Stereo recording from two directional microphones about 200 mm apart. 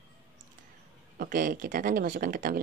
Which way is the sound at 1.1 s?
45° right (ahead or behind).